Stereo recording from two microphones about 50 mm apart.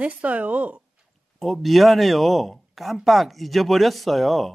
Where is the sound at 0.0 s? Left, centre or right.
Right.